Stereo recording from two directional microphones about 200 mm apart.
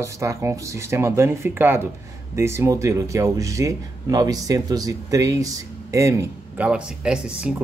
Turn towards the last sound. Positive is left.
turn(degrees=-5)  # may be behind; listen again after turning